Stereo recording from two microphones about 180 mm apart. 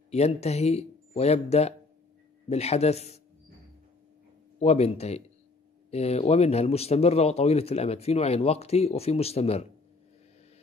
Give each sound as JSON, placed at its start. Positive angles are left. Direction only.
{"t": 0.1, "sound": "speech", "side_deg": 35}
{"t": 4.6, "sound": "speech", "side_deg": 35}